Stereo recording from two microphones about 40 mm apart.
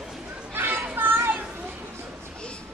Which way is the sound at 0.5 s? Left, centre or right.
Right.